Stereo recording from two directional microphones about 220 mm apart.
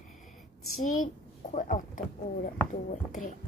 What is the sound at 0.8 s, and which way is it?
A woman's voice, 35° left (ahead or behind).